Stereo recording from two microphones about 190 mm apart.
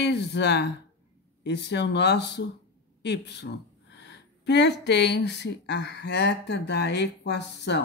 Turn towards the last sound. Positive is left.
turn(degrees=65)  # may be behind; listen again after turning